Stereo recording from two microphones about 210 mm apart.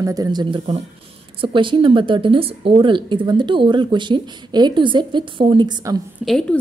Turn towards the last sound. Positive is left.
turn(degrees=0)  # may be behind; listen again after turning